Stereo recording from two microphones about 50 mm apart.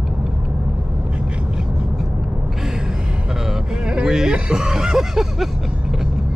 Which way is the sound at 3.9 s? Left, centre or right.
Centre.